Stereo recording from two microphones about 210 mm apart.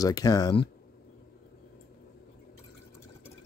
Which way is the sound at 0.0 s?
15° left (ahead or behind).